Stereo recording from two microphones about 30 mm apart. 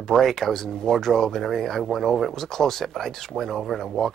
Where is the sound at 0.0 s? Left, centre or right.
Centre.